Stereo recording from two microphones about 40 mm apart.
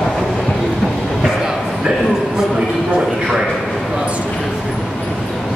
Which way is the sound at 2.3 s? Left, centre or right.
Centre.